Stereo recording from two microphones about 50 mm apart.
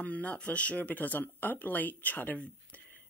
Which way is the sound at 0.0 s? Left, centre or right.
Left.